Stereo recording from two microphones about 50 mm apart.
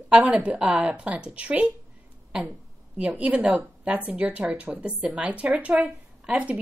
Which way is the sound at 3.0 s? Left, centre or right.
Right.